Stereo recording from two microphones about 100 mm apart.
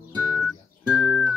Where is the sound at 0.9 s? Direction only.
5° right (ahead or behind).